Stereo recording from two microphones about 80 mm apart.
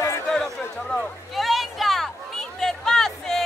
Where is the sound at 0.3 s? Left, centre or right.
Centre.